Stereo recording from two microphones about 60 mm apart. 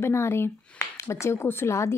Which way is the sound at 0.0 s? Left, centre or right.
Left.